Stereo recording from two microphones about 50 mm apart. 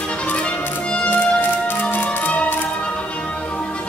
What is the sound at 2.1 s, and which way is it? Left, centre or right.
Music, left.